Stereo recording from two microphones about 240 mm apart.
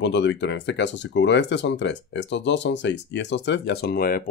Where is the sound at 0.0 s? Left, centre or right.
Left.